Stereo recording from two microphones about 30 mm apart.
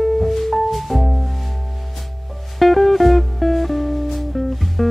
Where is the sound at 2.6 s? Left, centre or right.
Centre.